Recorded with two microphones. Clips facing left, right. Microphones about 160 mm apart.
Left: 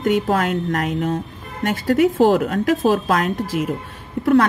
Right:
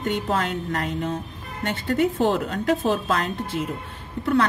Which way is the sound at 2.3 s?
75° left (ahead or behind).